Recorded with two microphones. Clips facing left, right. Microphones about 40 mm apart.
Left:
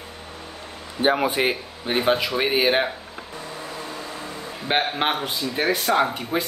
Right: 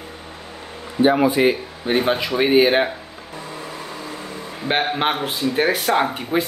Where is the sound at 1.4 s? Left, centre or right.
Centre.